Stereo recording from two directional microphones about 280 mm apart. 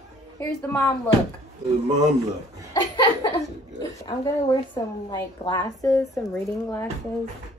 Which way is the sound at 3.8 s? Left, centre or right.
Centre.